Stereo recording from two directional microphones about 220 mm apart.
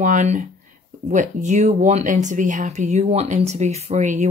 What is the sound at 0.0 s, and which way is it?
Speech, 35° right (ahead or behind).